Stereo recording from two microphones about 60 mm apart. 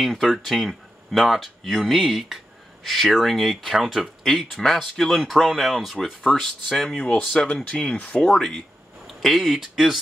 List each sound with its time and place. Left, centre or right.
0.0 s speech: centre
7.6 s speech: left
8.3 s speech: centre